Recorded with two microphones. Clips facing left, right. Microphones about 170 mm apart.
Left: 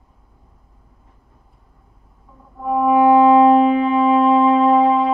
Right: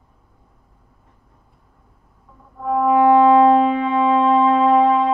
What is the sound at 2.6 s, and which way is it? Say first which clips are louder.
Music: left 1 dB; 15° left (ahead or behind).